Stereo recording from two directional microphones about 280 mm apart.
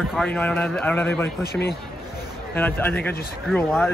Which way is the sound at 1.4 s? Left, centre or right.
Left.